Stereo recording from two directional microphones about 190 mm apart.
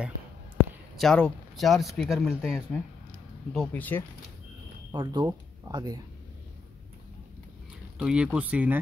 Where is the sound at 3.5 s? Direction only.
5° left (ahead or behind).